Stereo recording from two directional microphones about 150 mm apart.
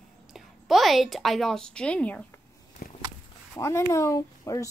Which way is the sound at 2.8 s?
70° left (ahead or behind).